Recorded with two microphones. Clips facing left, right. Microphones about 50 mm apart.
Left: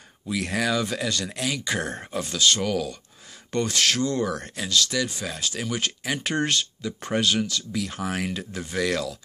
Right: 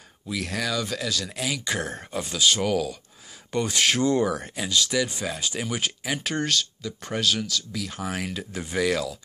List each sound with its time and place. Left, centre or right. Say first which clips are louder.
0.3 s speech: left 3 dB; centre
6.4 s speech: left 1 dB; centre